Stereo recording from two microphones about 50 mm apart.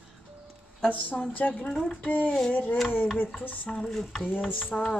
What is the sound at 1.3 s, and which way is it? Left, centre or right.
Speech, left.